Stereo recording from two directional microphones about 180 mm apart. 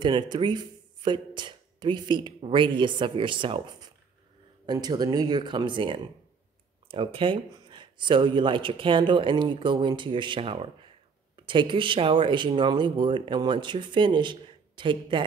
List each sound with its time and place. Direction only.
0.0 s speech: 25° right (ahead or behind)